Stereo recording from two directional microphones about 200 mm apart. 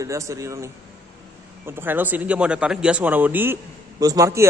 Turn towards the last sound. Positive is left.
turn(degrees=-15)  # may be behind; listen again after turning